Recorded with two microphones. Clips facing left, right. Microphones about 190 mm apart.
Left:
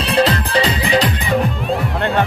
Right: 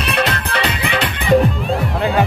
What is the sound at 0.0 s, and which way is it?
Music, 30° left (ahead or behind).